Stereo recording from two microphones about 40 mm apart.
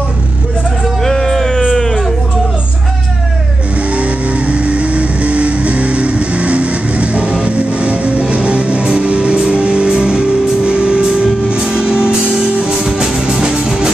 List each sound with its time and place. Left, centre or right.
1.0 s a sound: centre
3.9 s vehicle: right
11.6 s music: right